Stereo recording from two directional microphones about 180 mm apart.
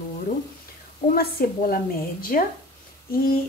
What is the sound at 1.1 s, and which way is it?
A woman's voice, 55° left (ahead or behind).